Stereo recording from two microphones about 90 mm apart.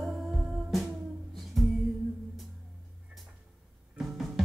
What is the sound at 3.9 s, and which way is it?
Music, 5° right (ahead or behind).